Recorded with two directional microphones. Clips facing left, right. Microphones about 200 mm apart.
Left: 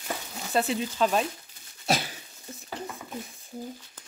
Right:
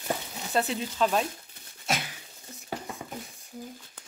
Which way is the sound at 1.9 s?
35° left (ahead or behind).